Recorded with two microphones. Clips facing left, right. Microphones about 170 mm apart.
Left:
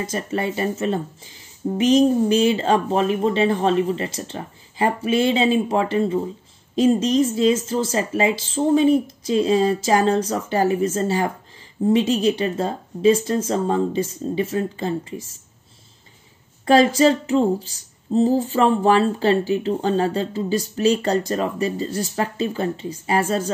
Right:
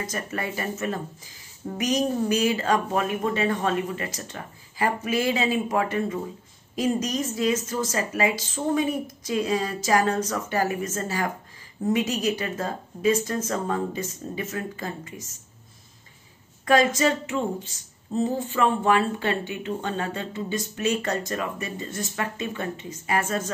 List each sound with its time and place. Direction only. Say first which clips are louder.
0.0 s speech: left 6 dB; 25° left (ahead or behind)
16.6 s speech: left 6 dB; 30° left (ahead or behind)